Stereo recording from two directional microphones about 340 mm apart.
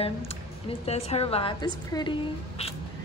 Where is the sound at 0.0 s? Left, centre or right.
Centre.